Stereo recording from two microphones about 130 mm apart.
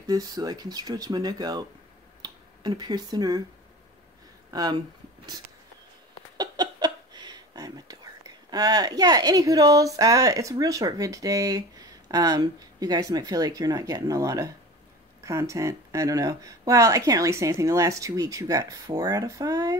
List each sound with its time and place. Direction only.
0.0 s speech: 30° right (ahead or behind)
4.5 s speech: 30° right (ahead or behind)
6.3 s a sound: 30° right (ahead or behind)
12.1 s speech: 30° right (ahead or behind)